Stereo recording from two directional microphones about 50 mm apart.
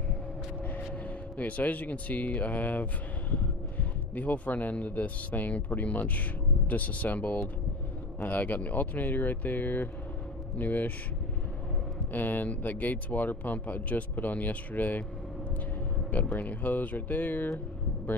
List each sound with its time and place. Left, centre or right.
1.4 s speech: left
12.1 s speech: left
16.3 s speech: left